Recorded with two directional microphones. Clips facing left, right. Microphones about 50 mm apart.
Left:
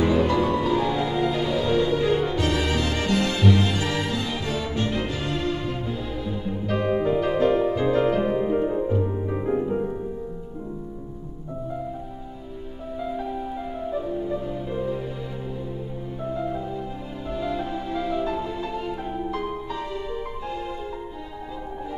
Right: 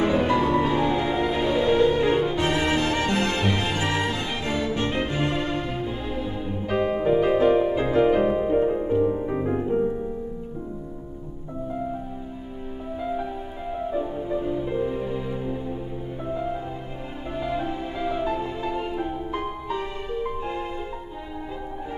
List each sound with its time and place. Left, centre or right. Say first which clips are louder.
0.0 s music: even; right
6.8 s music: right 2 dB; centre
13.1 s music: left 1 dB; centre
17.3 s music: even; right